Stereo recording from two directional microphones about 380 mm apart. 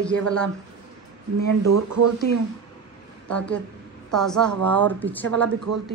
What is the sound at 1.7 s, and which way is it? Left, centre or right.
Speech, right.